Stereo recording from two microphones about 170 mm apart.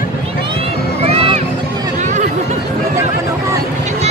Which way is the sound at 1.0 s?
30° right (ahead or behind).